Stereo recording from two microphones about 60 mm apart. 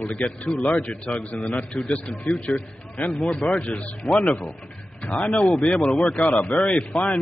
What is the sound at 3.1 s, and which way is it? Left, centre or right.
A man's voice, centre.